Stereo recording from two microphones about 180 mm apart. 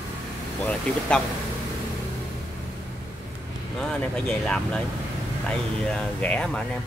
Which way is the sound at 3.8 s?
5° left (ahead or behind).